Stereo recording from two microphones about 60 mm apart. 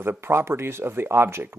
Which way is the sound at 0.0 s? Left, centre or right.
Right.